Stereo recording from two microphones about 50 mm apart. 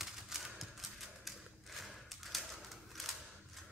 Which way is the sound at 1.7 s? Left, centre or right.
Centre.